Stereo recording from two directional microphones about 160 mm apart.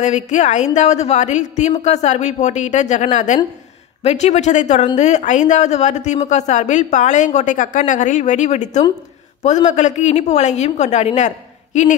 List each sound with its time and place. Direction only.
0.0 s speech: 45° left (ahead or behind)